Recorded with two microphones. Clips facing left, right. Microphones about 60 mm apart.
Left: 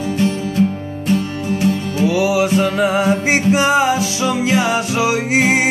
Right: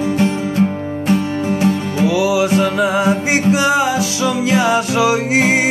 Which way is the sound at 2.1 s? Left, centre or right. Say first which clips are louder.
Right 1 dB; left.